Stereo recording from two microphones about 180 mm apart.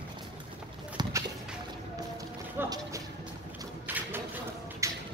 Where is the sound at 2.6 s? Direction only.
20° right (ahead or behind).